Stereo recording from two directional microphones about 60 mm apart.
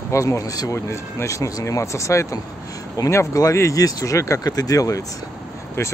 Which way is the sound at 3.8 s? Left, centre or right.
Left.